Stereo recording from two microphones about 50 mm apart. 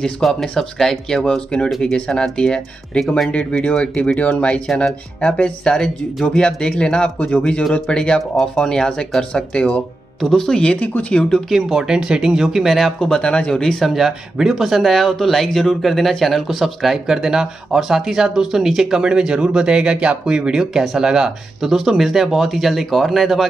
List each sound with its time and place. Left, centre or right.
0.2 s speech: centre
1.2 s speech: centre
10.2 s speech: centre
10.6 s speech: left
11.5 s speech: centre
13.0 s speech: centre
13.8 s speech: centre